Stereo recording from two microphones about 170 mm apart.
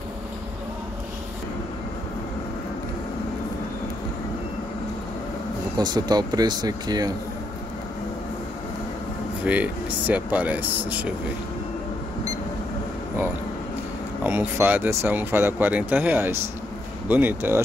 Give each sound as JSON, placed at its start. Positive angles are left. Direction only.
{"t": 5.8, "sound": "speech", "side_deg": -25}
{"t": 9.4, "sound": "speech", "side_deg": -10}
{"t": 14.2, "sound": "speech", "side_deg": -10}